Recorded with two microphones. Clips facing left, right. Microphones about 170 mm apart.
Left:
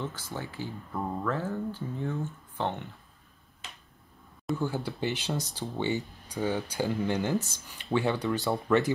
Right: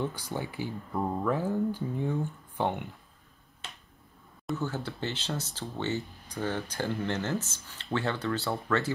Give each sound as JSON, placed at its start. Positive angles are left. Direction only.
{"t": 0.0, "sound": "speech", "side_deg": -15}
{"t": 4.6, "sound": "speech", "side_deg": 10}